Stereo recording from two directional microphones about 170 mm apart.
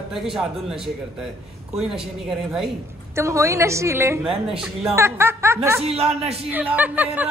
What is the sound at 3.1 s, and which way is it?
A woman's voice, 15° right (ahead or behind).